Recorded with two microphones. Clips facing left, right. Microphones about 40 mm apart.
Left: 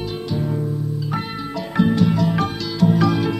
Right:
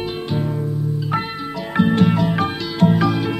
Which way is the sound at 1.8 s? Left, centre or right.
Right.